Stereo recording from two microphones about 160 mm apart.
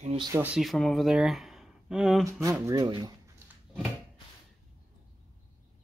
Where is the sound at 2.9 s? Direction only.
30° right (ahead or behind).